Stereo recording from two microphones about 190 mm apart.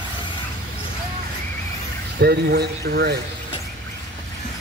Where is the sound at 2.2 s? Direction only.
60° right (ahead or behind).